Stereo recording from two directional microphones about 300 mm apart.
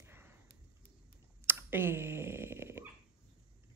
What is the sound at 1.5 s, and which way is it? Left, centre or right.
Clicking, centre.